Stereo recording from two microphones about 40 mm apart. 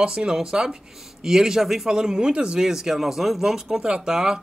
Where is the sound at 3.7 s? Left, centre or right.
Right.